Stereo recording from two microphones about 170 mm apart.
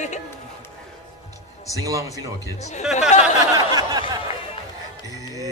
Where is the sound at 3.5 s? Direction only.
20° right (ahead or behind).